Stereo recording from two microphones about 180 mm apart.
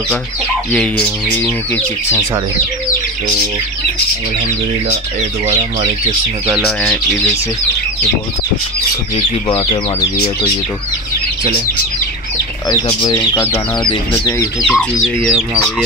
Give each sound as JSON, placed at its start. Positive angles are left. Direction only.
{"t": 0.7, "sound": "speech", "side_deg": 5}
{"t": 6.5, "sound": "speech", "side_deg": 0}
{"t": 9.6, "sound": "speech", "side_deg": 25}
{"t": 12.6, "sound": "speech", "side_deg": 20}
{"t": 14.6, "sound": "speech", "side_deg": 0}